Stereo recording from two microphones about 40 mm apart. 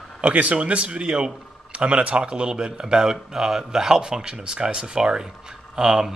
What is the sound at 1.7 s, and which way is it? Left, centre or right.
A man's voice, right.